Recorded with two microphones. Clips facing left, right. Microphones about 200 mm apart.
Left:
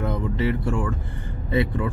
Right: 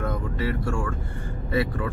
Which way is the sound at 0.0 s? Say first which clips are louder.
Left 3 dB; 25° left (ahead or behind).